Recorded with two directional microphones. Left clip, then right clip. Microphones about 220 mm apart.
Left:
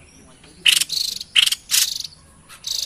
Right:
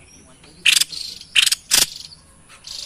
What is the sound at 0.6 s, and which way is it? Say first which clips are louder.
Cricket: even; 15° right (ahead or behind).